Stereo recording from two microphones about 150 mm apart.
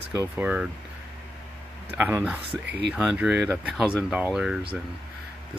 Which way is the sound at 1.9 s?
10° right (ahead or behind).